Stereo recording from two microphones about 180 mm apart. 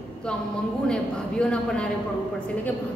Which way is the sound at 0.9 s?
5° left (ahead or behind).